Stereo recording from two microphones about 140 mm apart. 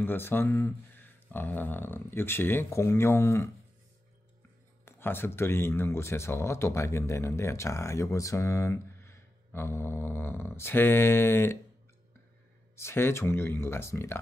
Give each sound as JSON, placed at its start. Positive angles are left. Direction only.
{"t": 0.0, "sound": "speech", "side_deg": 15}
{"t": 4.8, "sound": "speech", "side_deg": 15}
{"t": 12.7, "sound": "speech", "side_deg": 15}